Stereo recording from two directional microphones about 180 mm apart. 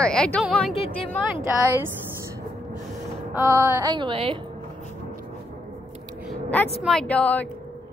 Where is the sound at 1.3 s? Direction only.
10° right (ahead or behind).